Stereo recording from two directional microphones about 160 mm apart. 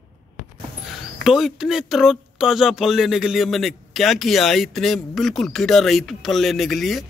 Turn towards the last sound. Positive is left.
turn(degrees=0)  # may be behind; listen again after turning